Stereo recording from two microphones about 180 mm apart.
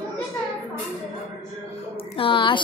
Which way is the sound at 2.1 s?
30° left (ahead or behind).